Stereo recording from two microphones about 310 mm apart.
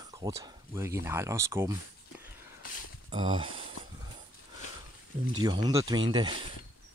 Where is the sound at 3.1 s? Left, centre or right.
Centre.